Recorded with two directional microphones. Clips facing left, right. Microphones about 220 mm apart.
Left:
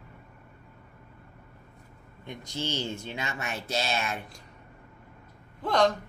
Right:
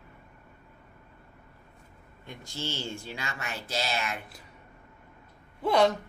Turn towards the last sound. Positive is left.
turn(degrees=-10)  # may be behind; listen again after turning